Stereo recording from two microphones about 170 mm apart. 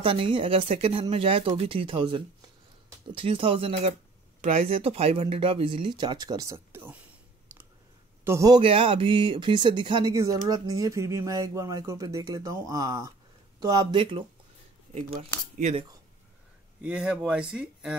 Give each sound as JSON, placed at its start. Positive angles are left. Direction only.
{"t": 0.0, "sound": "speech", "side_deg": -30}
{"t": 7.5, "sound": "clicking", "side_deg": -10}
{"t": 8.2, "sound": "a man's voice", "side_deg": -15}
{"t": 8.5, "sound": "speech", "side_deg": -30}
{"t": 15.0, "sound": "speech", "side_deg": -55}
{"t": 16.8, "sound": "speech", "side_deg": -5}